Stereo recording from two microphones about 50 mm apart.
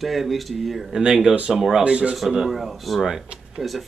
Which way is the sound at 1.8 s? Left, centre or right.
Centre.